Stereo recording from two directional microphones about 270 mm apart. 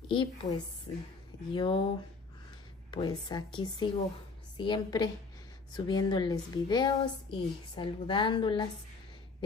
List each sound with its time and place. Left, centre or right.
0.1 s a woman's voice: centre